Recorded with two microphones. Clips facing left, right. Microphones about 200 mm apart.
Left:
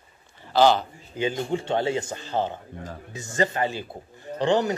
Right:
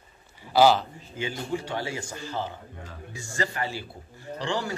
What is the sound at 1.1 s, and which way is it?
A man's voice, 20° left (ahead or behind).